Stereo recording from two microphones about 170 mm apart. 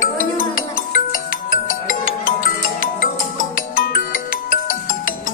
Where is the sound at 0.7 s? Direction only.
55° left (ahead or behind).